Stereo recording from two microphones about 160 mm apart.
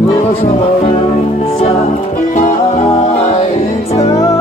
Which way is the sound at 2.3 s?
55° left (ahead or behind).